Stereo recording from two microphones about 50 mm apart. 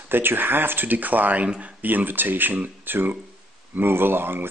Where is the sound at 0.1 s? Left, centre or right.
Right.